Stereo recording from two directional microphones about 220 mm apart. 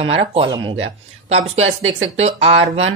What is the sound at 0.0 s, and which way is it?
Speech, 25° right (ahead or behind).